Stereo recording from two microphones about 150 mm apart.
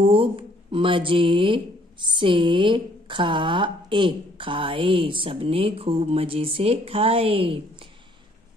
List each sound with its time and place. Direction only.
0.0 s speech: 35° right (ahead or behind)